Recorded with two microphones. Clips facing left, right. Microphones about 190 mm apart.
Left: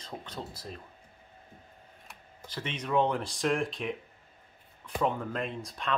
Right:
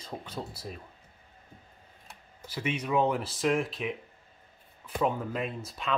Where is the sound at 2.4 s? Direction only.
10° right (ahead or behind).